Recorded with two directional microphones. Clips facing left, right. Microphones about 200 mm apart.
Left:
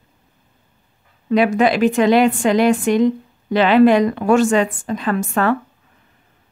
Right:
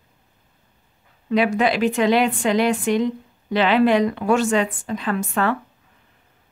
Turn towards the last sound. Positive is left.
turn(degrees=45)  # may be behind; listen again after turning